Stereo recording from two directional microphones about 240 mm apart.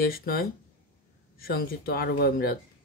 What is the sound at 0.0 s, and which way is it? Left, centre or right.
Speech, left.